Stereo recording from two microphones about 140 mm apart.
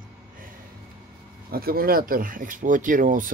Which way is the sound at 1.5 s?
90° right.